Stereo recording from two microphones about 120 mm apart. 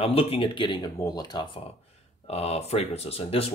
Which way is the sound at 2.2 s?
60° left (ahead or behind).